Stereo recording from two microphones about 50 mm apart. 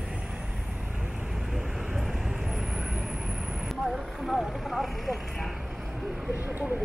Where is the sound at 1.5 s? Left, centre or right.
Centre.